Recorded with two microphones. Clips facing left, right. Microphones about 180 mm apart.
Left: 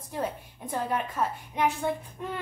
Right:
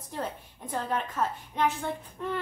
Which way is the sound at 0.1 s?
10° left (ahead or behind).